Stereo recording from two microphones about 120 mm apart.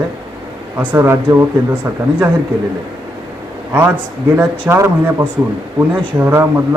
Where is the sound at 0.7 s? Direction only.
20° right (ahead or behind).